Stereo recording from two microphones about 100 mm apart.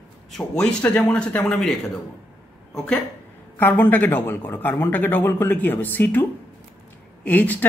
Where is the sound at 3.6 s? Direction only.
20° left (ahead or behind).